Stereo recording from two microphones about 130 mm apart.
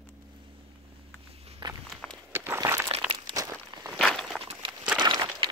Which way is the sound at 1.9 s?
5° left (ahead or behind).